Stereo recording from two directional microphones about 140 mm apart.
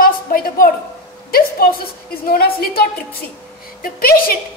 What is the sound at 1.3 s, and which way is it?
A woman's voice, 90° left.